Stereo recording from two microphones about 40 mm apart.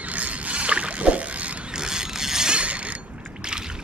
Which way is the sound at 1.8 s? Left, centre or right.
Centre.